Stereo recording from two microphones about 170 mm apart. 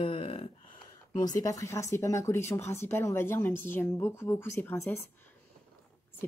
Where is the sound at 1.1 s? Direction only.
20° left (ahead or behind).